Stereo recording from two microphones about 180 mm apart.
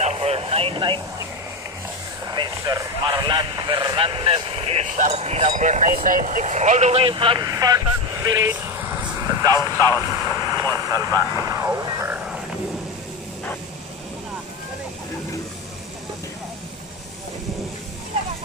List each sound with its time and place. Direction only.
0.0 s vehicle: 35° right (ahead or behind)
2.3 s speech: 20° right (ahead or behind)